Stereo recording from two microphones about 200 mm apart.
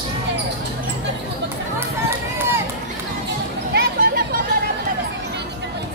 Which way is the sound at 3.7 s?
50° right (ahead or behind).